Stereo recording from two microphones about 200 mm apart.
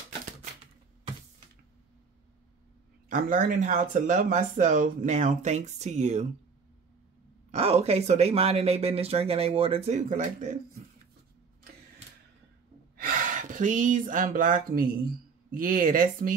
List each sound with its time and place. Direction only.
3.1 s speech: 45° right (ahead or behind)
7.5 s speech: 30° right (ahead or behind)
12.9 s speech: 45° right (ahead or behind)